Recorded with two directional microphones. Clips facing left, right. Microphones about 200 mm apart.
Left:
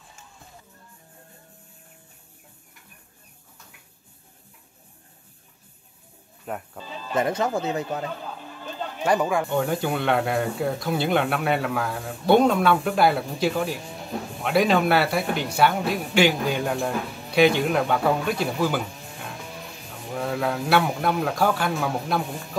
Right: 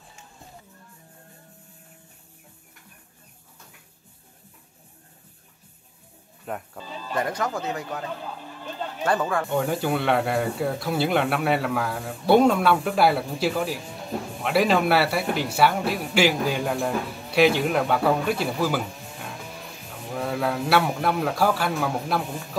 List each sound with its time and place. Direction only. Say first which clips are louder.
6.4 s speech: even; centre (ahead or behind)
7.2 s speech: left 4 dB; 25° left (ahead or behind)
8.1 s a sound: even; 5° right (ahead or behind)
9.0 s speech: left 2 dB; 15° left (ahead or behind)
9.5 s speech: even; centre (ahead or behind)